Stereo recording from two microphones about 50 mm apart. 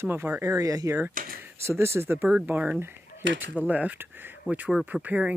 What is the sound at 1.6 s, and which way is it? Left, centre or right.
Speech, right.